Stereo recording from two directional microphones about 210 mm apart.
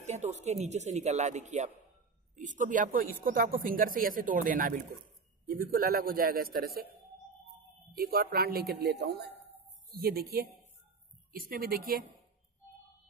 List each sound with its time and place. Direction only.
0.0 s a man's voice: 35° right (ahead or behind)
7.9 s a man's voice: 45° right (ahead or behind)